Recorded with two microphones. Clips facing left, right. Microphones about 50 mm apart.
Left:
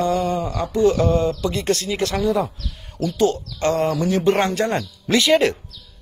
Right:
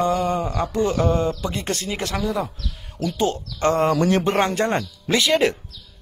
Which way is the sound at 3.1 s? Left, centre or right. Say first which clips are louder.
Left 4 dB; right.